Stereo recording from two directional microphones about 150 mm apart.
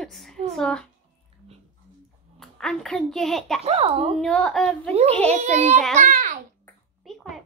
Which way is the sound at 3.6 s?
40° right (ahead or behind).